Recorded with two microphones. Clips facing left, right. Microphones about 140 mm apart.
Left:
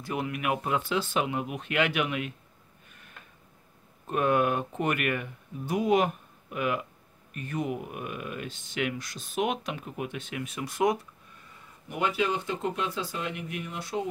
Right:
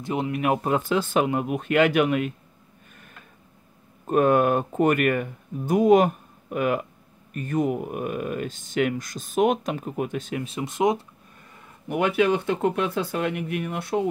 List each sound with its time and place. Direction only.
0.0 s speech: 25° right (ahead or behind); by 2.3 s 45° right (ahead or behind)
4.1 s speech: 45° right (ahead or behind); by 11.1 s 20° right (ahead or behind)
11.9 s speech: 60° right (ahead or behind)